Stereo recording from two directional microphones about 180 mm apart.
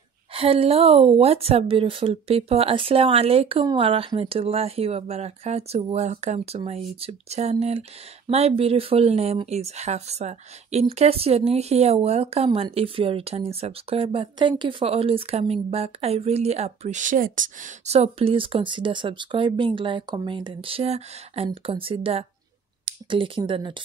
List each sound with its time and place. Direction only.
0.3 s speech: 30° right (ahead or behind)